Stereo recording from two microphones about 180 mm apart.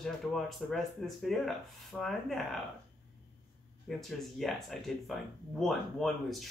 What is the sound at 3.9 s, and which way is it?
Speech, centre (ahead or behind).